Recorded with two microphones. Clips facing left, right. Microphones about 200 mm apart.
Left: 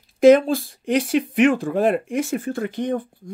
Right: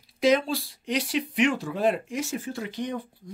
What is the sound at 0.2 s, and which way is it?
Speech, 50° left (ahead or behind).